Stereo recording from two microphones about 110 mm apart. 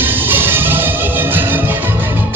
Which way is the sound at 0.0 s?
20° right (ahead or behind).